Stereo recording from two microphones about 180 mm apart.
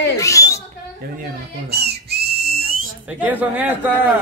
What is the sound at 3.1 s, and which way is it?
Speech, 10° right (ahead or behind).